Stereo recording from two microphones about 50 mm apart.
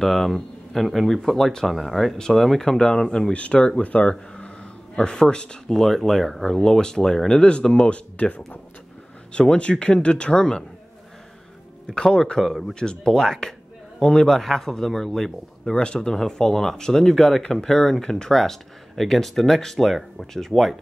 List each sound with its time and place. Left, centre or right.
0.0 s a man's voice: centre
3.3 s speech: left
11.9 s speech: centre
12.4 s speech: centre
12.7 s speech: centre
15.7 s speech: centre